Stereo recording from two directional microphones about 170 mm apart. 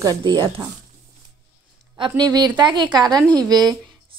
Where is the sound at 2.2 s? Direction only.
25° right (ahead or behind).